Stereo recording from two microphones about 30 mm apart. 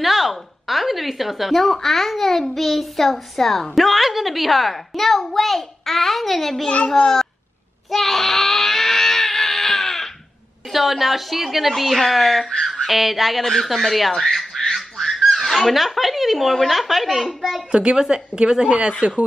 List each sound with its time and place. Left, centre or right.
0.0 s a woman's voice: centre
7.0 s a child's voice: left
7.9 s screaming: centre
10.7 s a woman's voice: centre
12.8 s a woman's voice: centre
13.4 s speech: centre
15.0 s a sound: centre
15.5 s a woman's voice: centre
17.3 s a child's voice: centre
17.6 s a woman's voice: right